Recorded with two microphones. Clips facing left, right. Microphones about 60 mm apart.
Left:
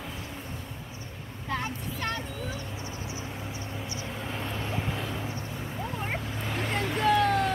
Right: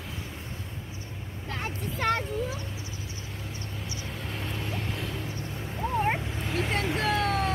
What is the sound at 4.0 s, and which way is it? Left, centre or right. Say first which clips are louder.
Vehicle: left 1 dB; centre.